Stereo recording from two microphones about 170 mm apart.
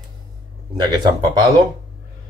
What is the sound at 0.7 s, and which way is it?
Speech, 25° right (ahead or behind).